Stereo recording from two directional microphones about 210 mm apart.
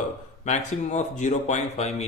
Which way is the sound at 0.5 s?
35° left (ahead or behind).